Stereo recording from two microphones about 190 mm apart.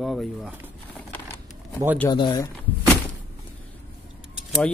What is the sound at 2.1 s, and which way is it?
Speech, 25° left (ahead or behind).